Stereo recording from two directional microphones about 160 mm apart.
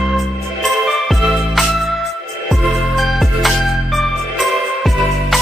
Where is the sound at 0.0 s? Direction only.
Centre (ahead or behind).